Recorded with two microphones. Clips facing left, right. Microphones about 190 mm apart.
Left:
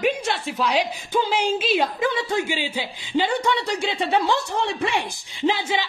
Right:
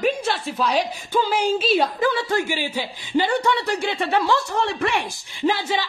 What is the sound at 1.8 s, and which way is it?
Speech, 15° left (ahead or behind).